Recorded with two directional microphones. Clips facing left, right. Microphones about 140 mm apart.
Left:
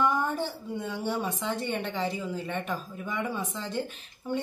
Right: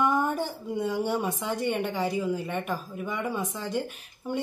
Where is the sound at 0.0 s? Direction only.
15° right (ahead or behind).